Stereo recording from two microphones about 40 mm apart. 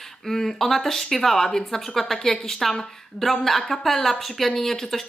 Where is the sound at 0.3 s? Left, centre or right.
Centre.